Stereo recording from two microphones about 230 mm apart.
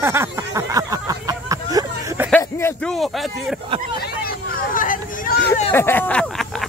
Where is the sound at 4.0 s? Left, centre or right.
Left.